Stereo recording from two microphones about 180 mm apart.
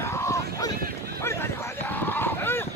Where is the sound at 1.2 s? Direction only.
15° left (ahead or behind).